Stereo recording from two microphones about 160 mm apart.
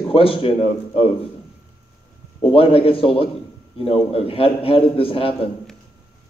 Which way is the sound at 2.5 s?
35° left (ahead or behind).